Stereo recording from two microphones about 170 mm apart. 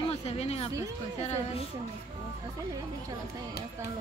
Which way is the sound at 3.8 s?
15° right (ahead or behind).